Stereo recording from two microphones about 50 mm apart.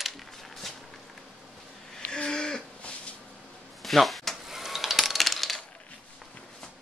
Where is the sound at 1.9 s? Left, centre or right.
Centre.